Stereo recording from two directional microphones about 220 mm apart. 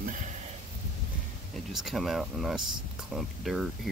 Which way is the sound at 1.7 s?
Centre (ahead or behind).